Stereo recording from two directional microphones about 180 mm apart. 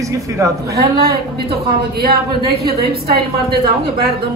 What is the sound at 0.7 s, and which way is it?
A woman's voice, 60° right (ahead or behind).